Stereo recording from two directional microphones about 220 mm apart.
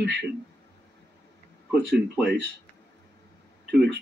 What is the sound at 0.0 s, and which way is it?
Speech, 50° right (ahead or behind).